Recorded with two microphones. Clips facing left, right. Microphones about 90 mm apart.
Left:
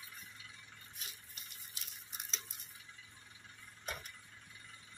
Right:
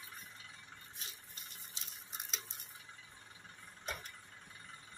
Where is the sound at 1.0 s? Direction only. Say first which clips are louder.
Even; 35° right (ahead or behind).